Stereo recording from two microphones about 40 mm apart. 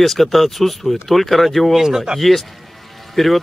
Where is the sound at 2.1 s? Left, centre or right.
Centre.